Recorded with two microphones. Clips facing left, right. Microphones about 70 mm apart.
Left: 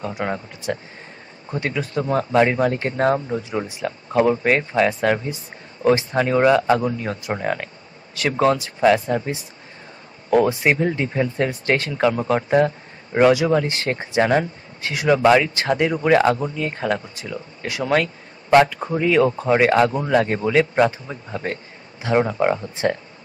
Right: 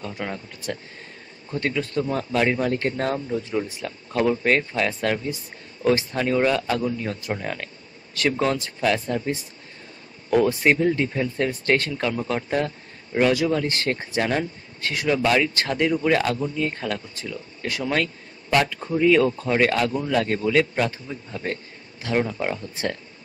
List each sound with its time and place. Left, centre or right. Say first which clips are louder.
0.0 s speech: left 6 dB; left
2.0 s speech: left 7 dB; left
7.0 s speech: left 3 dB; centre
10.3 s speech: left 2 dB; left
14.4 s speech: even; centre
16.5 s speech: even; centre
16.8 s speech: left 5 dB; left
22.0 s speech: left 6 dB; left